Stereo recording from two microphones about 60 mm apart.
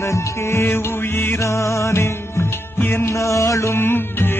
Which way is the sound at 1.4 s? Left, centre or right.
Left.